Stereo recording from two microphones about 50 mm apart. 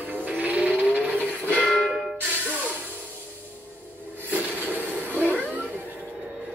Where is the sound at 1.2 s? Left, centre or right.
Left.